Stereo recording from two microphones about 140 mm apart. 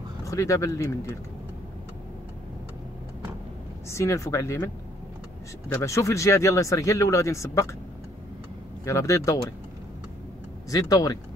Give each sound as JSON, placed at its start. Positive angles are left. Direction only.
{"t": 0.2, "sound": "speech", "side_deg": 25}
{"t": 3.9, "sound": "speech", "side_deg": 20}
{"t": 5.7, "sound": "speech", "side_deg": 20}
{"t": 8.8, "sound": "speech", "side_deg": 25}
{"t": 10.7, "sound": "speech", "side_deg": 25}